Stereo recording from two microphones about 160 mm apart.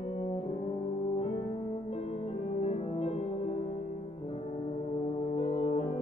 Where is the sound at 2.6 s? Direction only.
40° left (ahead or behind).